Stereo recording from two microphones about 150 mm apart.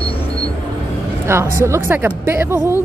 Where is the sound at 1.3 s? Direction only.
15° right (ahead or behind).